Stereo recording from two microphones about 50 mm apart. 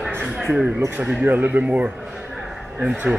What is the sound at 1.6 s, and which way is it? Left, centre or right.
Speech, right.